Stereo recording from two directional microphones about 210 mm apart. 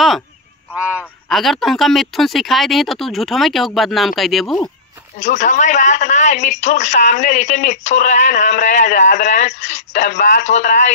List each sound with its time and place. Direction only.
0.7 s speech: 5° right (ahead or behind)
5.2 s speech: 35° left (ahead or behind)